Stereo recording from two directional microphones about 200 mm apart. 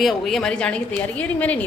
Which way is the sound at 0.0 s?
Centre (ahead or behind).